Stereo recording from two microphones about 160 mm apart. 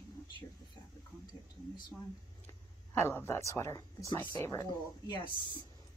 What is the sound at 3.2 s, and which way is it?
Speech, 15° left (ahead or behind).